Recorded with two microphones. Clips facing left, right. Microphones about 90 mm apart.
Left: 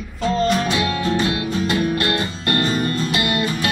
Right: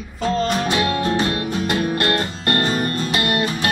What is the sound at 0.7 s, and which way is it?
Music, 50° right (ahead or behind).